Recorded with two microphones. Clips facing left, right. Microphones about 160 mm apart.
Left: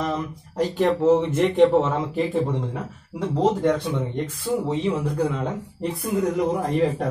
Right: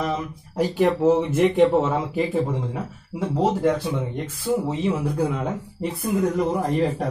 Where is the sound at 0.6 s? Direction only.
10° right (ahead or behind).